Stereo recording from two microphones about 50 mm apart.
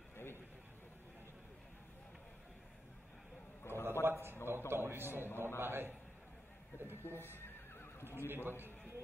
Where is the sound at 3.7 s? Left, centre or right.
Left.